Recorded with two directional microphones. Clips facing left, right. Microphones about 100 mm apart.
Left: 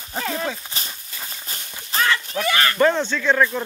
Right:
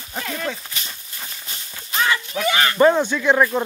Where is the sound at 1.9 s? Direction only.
35° left (ahead or behind).